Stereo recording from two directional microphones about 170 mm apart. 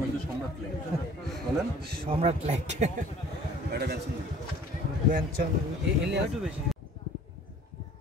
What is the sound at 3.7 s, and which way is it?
Speech, 70° right (ahead or behind).